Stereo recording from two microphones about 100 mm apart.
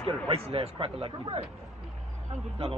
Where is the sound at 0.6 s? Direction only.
65° right (ahead or behind).